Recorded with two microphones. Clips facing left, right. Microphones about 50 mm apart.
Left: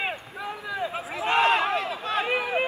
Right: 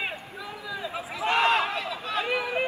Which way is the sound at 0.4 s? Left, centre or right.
Left.